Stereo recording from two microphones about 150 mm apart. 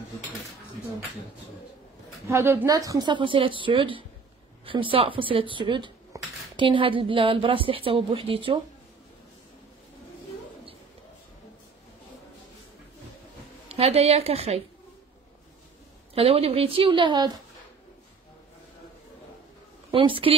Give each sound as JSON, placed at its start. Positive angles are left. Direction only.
{"t": 2.2, "sound": "speech", "side_deg": -15}
{"t": 13.7, "sound": "a woman's voice", "side_deg": -40}
{"t": 16.2, "sound": "speech", "side_deg": -40}
{"t": 19.9, "sound": "speech", "side_deg": -35}